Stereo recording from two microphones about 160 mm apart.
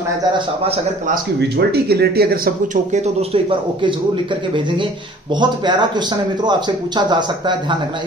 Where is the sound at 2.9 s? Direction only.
45° right (ahead or behind); by 7.8 s 30° right (ahead or behind).